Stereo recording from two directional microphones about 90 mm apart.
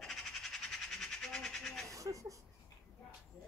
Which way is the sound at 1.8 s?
35° right (ahead or behind).